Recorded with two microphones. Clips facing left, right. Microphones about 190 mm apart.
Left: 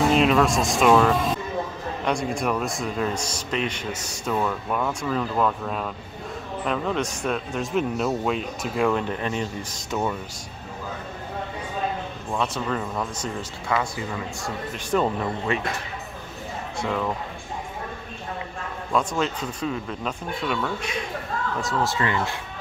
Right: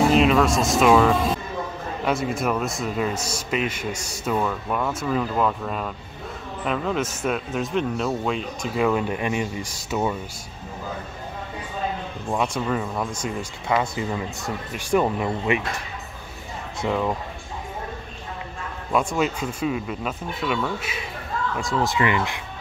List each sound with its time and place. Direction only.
0.1 s a man's voice: centre (ahead or behind)
12.3 s speech: 10° right (ahead or behind)
14.9 s speech: 10° right (ahead or behind)
16.8 s speech: 15° right (ahead or behind)
18.9 s speech: 10° right (ahead or behind)